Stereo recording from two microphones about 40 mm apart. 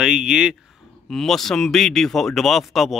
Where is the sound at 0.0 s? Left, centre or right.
Centre.